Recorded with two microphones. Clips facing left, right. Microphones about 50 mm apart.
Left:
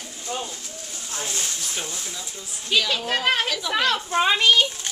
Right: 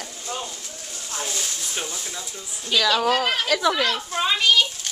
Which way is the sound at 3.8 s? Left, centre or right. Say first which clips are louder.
Left 2 dB; left.